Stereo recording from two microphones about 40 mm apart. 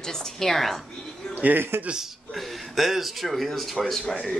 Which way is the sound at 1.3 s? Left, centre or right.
Right.